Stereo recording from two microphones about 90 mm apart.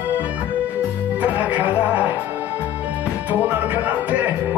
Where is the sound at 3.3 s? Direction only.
20° right (ahead or behind).